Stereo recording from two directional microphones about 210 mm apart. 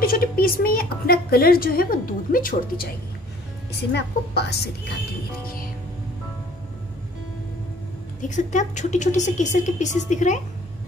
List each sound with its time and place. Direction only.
0.0 s a woman's voice: 45° left (ahead or behind)
8.2 s speech: 35° left (ahead or behind)